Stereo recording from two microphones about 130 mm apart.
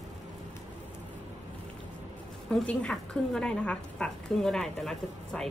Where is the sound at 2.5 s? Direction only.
5° left (ahead or behind).